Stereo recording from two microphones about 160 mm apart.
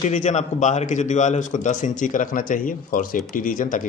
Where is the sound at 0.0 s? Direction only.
50° left (ahead or behind).